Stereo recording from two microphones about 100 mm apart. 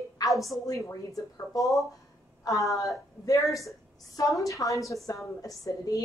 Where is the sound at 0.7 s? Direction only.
35° left (ahead or behind).